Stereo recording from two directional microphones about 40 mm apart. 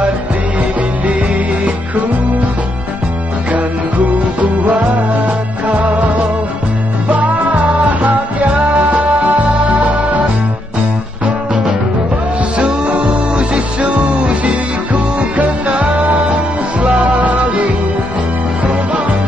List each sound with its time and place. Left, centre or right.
0.6 s music: right
3.5 s music: right
7.1 s music: right
12.5 s music: right